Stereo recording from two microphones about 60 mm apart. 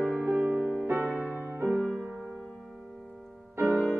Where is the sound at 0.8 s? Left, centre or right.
Right.